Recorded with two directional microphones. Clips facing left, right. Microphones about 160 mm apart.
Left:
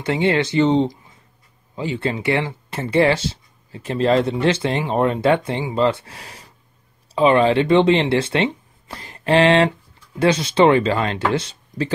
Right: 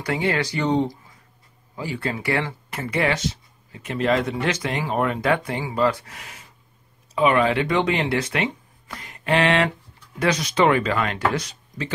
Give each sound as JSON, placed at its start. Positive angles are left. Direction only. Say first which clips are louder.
{"t": 0.0, "sound": "speech", "louder": "left 5 dB", "side_deg": 25}